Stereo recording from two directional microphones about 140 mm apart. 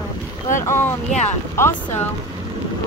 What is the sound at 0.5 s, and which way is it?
Speech, 20° left (ahead or behind).